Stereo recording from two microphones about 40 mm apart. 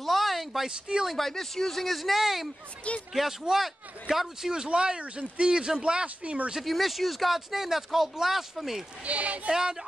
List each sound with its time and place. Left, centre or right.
0.0 s a sound: centre
0.7 s speech: right
1.0 s a man's voice: centre; by 6.0 s right
6.0 s speech: right
6.6 s speech: centre
9.0 s speech: right
9.5 s a man's voice: centre